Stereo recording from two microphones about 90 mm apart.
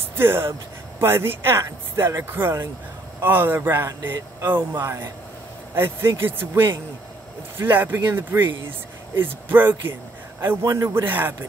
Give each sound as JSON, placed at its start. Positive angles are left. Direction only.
{"t": 0.1, "sound": "speech", "side_deg": -25}
{"t": 10.6, "sound": "speech", "side_deg": -35}